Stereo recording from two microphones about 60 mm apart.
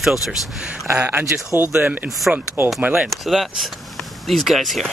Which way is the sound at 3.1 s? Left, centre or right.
Centre.